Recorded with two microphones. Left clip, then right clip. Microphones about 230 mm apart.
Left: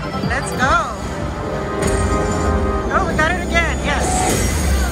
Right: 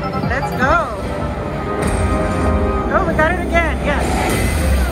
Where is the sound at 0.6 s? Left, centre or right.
Centre.